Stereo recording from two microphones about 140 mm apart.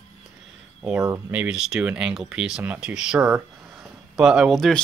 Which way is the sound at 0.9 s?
20° right (ahead or behind).